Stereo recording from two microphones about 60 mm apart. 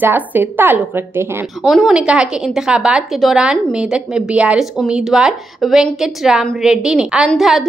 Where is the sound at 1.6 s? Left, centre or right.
Centre.